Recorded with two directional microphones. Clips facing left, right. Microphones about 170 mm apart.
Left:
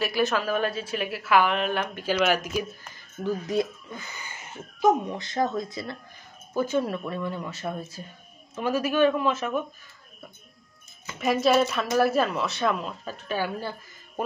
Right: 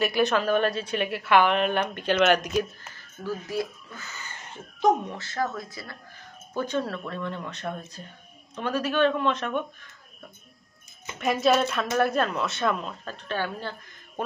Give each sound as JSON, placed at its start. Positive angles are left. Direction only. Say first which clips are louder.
{"t": 0.0, "sound": "a woman's voice", "louder": "right 2 dB", "side_deg": 0}
{"t": 2.9, "sound": "speech", "louder": "left 4 dB", "side_deg": 20}
{"t": 5.1, "sound": "speech", "louder": "left 3 dB", "side_deg": 20}
{"t": 6.5, "sound": "a woman's voice", "louder": "left 3 dB", "side_deg": 5}
{"t": 11.1, "sound": "a woman's voice", "louder": "left 1 dB", "side_deg": 0}